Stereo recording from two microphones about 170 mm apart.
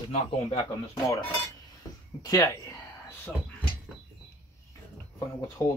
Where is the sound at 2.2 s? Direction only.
20° left (ahead or behind).